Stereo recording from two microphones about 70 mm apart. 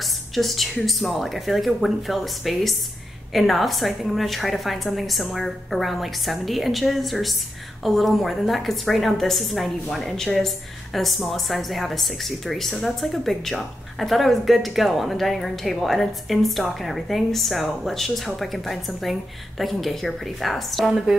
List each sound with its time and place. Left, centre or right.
0.3 s a woman's voice: centre